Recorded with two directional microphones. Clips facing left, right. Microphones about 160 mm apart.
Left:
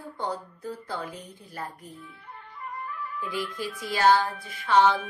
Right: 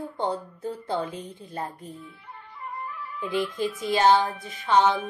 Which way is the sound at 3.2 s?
20° right (ahead or behind).